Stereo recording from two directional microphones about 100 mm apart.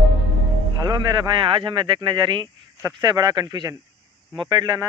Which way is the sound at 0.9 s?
60° right (ahead or behind).